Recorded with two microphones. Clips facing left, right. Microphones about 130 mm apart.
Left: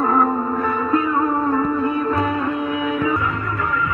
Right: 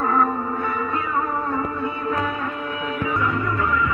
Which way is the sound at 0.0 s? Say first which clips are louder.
Left 3 dB; 25° left (ahead or behind).